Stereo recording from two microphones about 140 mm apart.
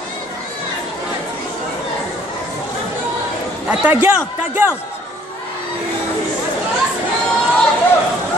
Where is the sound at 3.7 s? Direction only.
10° right (ahead or behind).